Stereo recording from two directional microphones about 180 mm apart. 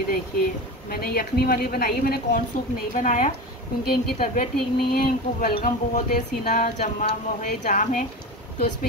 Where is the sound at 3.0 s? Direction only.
45° left (ahead or behind).